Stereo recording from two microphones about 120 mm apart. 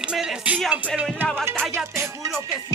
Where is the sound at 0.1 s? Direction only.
5° right (ahead or behind).